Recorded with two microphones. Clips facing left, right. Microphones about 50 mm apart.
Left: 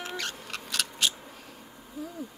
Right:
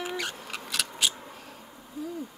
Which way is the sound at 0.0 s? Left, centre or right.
Centre.